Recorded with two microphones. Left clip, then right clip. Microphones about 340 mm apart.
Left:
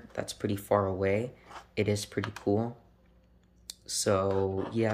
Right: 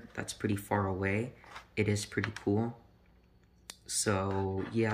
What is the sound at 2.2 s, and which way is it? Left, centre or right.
Speech, centre.